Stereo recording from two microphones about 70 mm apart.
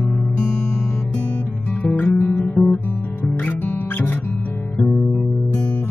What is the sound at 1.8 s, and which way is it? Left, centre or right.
Guitar, left.